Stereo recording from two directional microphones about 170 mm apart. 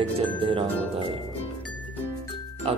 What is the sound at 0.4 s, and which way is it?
Speech, 30° right (ahead or behind).